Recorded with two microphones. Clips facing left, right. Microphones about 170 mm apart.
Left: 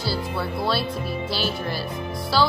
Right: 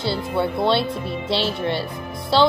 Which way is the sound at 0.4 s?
25° right (ahead or behind).